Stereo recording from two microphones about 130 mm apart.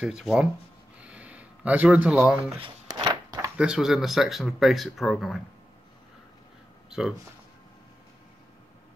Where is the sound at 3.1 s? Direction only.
30° right (ahead or behind).